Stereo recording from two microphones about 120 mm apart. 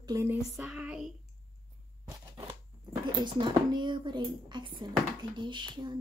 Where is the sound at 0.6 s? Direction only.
5° right (ahead or behind).